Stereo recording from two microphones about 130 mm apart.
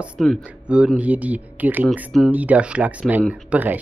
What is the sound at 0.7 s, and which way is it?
Speech, 10° right (ahead or behind).